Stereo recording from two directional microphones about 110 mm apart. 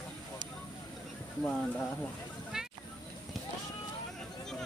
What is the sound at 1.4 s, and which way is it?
Speech, 5° left (ahead or behind).